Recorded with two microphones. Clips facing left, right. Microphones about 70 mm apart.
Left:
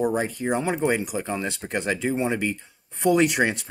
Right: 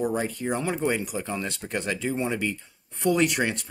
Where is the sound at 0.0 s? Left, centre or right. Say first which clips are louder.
Left 3 dB; centre.